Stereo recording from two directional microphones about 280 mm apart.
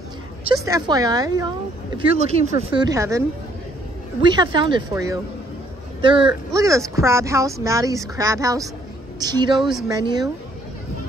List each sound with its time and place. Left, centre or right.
0.7 s speech: centre
9.6 s speech: centre
9.8 s speech: centre